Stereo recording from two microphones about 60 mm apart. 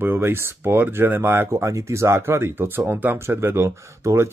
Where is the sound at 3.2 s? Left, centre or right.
Right.